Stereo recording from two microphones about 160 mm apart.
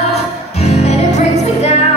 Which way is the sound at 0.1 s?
40° left (ahead or behind).